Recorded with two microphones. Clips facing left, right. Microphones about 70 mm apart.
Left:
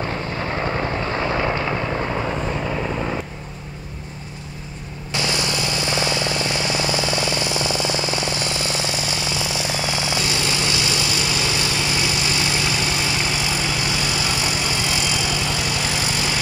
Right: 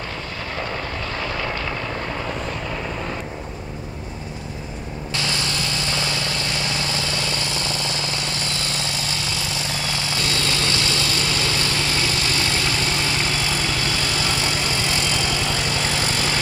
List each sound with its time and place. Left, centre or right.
0.4 s vehicle: left
5.1 s vehicle: centre